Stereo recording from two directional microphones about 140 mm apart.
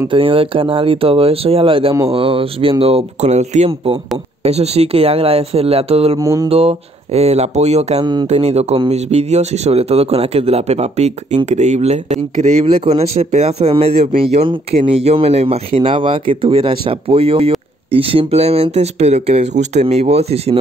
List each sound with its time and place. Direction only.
0.1 s speech: 40° right (ahead or behind)
6.1 s mantra: 25° right (ahead or behind)
6.5 s speech: 45° right (ahead or behind)
8.0 s speech: 30° right (ahead or behind)
8.3 s speech: 50° right (ahead or behind)